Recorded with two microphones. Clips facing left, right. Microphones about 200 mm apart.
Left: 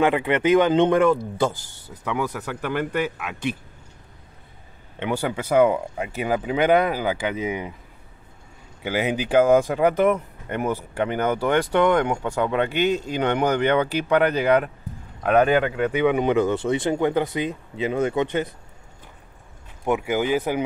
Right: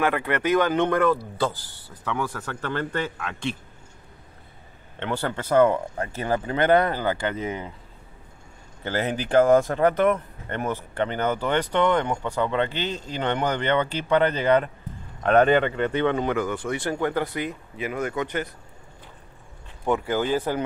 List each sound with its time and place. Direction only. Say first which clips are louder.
0.0 s speech: left 4 dB; 20° left (ahead or behind)
4.9 s speech: left 3 dB; 10° left (ahead or behind)
8.8 s speech: left 3 dB; 10° left (ahead or behind)
19.8 s speech: left 1 dB; 10° left (ahead or behind)